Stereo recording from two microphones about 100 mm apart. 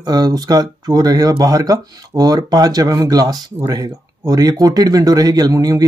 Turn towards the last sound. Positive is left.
turn(degrees=-40)  # may be behind; listen again after turning